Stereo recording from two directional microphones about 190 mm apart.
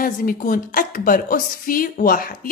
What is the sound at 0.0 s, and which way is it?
A woman's voice, 45° left (ahead or behind).